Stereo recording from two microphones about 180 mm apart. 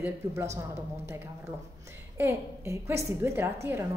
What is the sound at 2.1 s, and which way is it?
A woman's voice, 15° right (ahead or behind).